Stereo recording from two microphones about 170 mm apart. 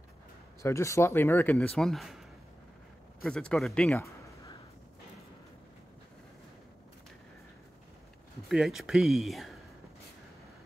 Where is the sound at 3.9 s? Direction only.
15° left (ahead or behind).